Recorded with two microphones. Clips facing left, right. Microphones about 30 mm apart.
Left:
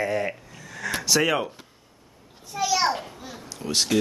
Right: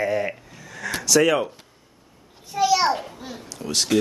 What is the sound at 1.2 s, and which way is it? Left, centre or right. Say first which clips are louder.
Speech: right 5 dB; centre.